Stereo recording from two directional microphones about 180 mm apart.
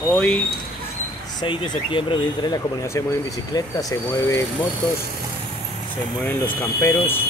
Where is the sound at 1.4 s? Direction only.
25° left (ahead or behind).